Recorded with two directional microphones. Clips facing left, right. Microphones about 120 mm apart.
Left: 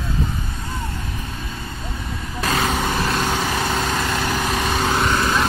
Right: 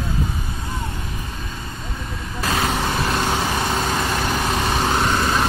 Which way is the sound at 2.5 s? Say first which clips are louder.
Left 1 dB; 5° right (ahead or behind).